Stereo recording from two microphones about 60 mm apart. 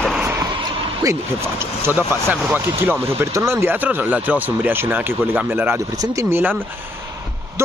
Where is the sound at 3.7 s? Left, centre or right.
Right.